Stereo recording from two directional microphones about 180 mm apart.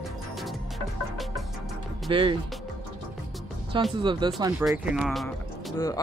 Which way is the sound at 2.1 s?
25° right (ahead or behind).